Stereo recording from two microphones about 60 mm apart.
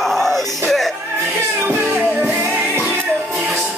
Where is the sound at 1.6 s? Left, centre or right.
Right.